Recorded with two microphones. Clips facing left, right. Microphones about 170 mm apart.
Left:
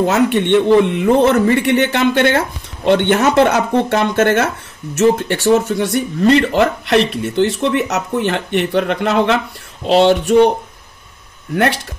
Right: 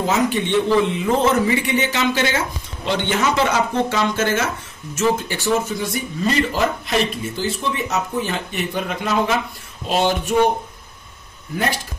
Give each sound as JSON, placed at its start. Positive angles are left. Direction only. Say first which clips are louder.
{"t": 0.0, "sound": "speech", "louder": "left 6 dB", "side_deg": 65}
{"t": 11.5, "sound": "speech", "louder": "left 7 dB", "side_deg": 65}